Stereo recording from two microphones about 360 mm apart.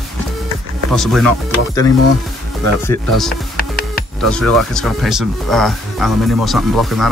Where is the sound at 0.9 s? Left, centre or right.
Centre.